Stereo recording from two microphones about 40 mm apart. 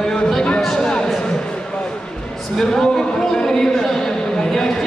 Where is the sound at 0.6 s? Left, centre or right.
Centre.